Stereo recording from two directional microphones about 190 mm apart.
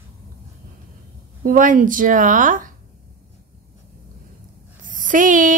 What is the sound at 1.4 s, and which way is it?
A woman's voice, 45° right (ahead or behind).